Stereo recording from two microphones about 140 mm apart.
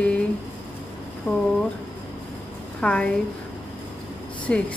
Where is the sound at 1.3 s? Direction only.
15° left (ahead or behind).